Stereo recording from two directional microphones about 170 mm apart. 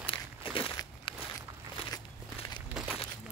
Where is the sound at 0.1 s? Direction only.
30° left (ahead or behind).